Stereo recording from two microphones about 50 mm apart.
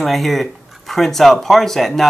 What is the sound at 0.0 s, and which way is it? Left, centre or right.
Speech, centre.